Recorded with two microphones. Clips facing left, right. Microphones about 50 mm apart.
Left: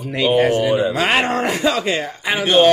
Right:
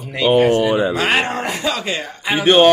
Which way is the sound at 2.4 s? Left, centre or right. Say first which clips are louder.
Right 2 dB; right.